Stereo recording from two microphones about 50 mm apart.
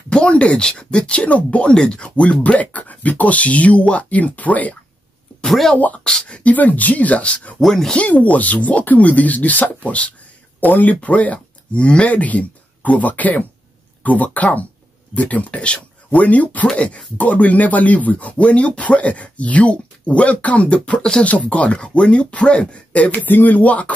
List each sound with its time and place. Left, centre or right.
0.1 s speech: left
5.5 s speech: centre
6.0 s speech: centre
6.5 s speech: left
7.6 s speech: centre
7.9 s speech: left
23.2 s speech: left